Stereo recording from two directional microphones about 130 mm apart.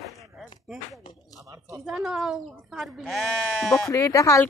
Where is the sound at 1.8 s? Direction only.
5° right (ahead or behind).